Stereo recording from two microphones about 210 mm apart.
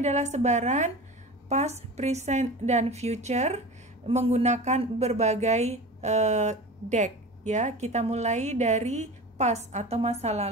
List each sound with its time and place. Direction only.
0.0 s speech: 35° right (ahead or behind)